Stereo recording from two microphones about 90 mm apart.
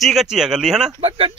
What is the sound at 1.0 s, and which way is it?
Speech, 90° right.